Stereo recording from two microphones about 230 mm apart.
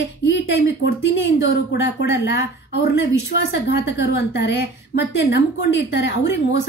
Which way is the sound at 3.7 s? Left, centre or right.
Left.